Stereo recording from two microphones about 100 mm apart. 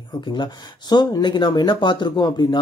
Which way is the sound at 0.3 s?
45° left (ahead or behind).